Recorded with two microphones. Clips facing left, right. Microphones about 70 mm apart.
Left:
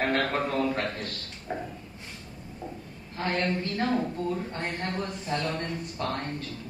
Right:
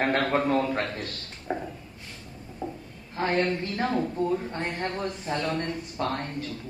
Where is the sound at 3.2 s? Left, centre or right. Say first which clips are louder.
Right 3 dB; right.